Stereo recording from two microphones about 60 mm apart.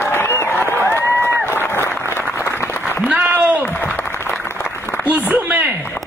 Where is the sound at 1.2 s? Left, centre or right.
Left.